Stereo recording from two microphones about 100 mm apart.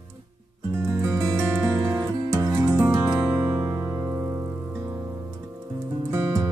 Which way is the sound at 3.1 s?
20° right (ahead or behind).